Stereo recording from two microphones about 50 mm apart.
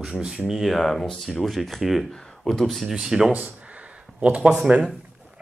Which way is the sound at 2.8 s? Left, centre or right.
Centre.